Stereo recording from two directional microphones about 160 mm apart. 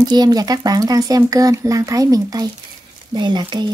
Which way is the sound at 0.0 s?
25° right (ahead or behind).